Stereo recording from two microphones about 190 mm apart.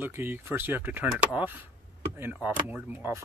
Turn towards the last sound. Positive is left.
turn(degrees=-10)  # may be behind; listen again after turning